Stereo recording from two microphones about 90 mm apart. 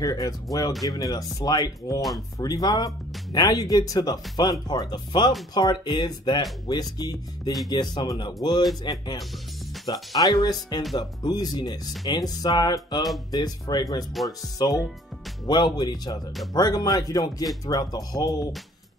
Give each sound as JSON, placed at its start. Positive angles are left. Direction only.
{"t": 0.0, "sound": "speech", "side_deg": 45}
{"t": 2.0, "sound": "speech", "side_deg": 0}
{"t": 2.3, "sound": "speech", "side_deg": 45}
{"t": 6.7, "sound": "speech", "side_deg": 45}